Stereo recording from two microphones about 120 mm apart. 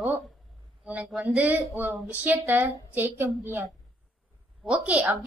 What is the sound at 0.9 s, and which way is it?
Speech, 10° right (ahead or behind).